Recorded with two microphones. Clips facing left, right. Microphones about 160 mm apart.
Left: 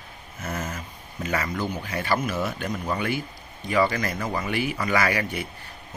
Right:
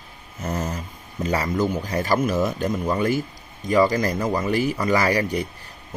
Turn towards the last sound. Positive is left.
turn(degrees=-35)  # may be behind; listen again after turning